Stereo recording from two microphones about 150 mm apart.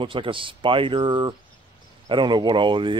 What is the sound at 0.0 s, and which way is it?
Speech, 35° right (ahead or behind).